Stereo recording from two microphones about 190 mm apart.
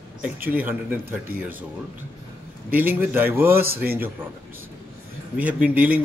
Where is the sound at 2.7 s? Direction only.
10° right (ahead or behind).